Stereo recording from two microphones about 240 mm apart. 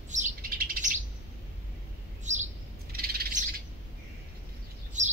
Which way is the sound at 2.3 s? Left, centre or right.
Right.